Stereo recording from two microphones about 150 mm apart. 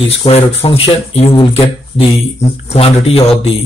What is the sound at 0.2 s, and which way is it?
Speech, 40° left (ahead or behind).